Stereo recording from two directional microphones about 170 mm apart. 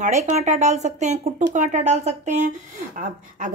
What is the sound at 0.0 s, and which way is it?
Speech, 45° right (ahead or behind).